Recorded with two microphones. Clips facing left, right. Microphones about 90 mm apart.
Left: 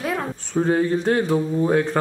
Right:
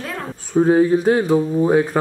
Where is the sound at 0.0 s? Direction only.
10° left (ahead or behind).